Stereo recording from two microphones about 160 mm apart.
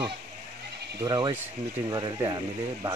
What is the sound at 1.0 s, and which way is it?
Speech, 25° right (ahead or behind).